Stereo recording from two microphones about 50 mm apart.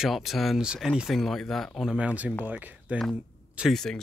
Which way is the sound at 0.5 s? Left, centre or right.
Centre.